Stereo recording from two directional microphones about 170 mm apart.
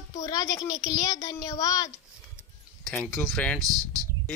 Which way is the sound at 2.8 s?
Centre (ahead or behind).